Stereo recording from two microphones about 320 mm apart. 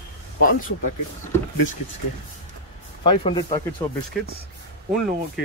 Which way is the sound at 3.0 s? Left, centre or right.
Centre.